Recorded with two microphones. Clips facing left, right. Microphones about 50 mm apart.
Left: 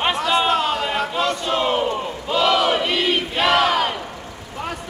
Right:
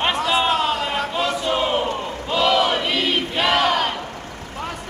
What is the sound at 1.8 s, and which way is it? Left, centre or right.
Crowd, left.